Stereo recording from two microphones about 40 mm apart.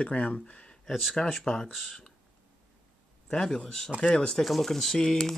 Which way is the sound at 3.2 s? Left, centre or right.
Left.